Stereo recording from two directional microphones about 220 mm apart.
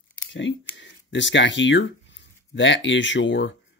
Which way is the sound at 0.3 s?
55° left (ahead or behind).